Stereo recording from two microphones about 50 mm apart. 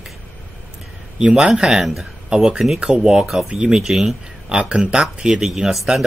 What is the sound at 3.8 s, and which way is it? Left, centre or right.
Speech, centre.